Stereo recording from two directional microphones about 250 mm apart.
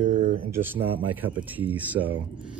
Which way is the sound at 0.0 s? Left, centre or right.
Right.